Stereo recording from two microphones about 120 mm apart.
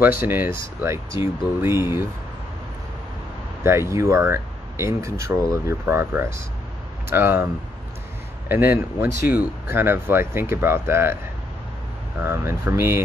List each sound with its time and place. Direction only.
0.0 s speech: 15° right (ahead or behind)
3.6 s speech: 20° right (ahead or behind)
8.5 s speech: 15° right (ahead or behind)
12.2 s speech: 20° right (ahead or behind)